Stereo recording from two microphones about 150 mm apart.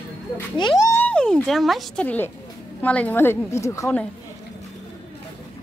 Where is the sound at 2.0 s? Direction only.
10° left (ahead or behind).